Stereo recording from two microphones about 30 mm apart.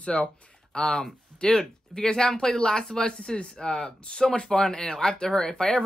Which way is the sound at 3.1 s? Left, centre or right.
Left.